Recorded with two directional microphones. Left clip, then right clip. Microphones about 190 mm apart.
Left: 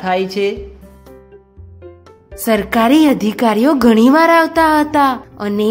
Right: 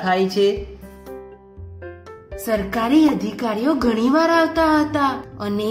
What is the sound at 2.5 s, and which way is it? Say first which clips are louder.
A woman's voice: left 7 dB; 55° left (ahead or behind).